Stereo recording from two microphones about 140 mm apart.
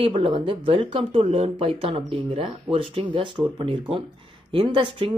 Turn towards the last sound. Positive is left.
turn(degrees=-40)  # may be behind; listen again after turning